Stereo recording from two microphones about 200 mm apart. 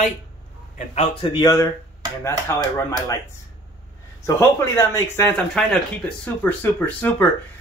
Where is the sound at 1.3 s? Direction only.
20° left (ahead or behind).